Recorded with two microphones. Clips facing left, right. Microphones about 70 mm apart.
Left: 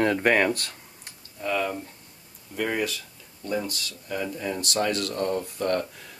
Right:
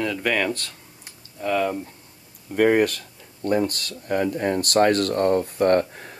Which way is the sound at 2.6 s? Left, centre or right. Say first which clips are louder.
Right 10 dB; right.